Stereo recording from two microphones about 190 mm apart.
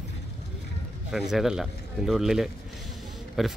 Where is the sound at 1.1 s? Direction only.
Centre (ahead or behind).